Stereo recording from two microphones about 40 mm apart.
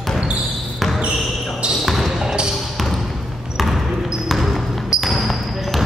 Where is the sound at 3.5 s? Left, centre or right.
Centre.